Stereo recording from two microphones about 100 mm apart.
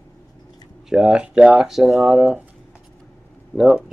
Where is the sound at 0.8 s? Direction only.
5° right (ahead or behind).